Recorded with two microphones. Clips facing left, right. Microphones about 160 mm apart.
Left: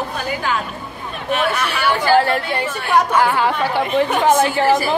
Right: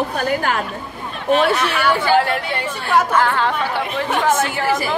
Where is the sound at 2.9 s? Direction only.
10° left (ahead or behind).